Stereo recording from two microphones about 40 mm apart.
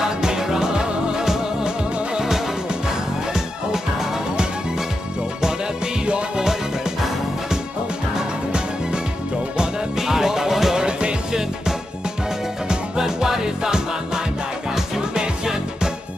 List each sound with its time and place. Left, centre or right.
0.0 s music: centre
6.0 s music: right
9.6 s music: centre
10.8 s music: right
12.6 s music: centre